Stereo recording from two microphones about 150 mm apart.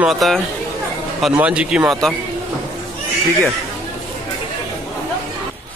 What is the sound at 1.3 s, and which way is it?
Speech, 5° right (ahead or behind).